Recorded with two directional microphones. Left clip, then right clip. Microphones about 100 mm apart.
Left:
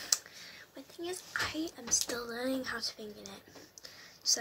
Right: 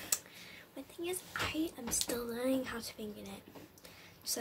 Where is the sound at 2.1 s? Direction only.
10° right (ahead or behind).